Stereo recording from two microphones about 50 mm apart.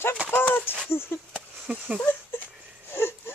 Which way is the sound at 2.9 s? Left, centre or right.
Left.